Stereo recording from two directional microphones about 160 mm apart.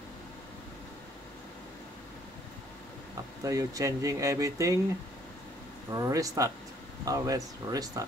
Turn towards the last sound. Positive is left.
turn(degrees=-25)  # may be behind; listen again after turning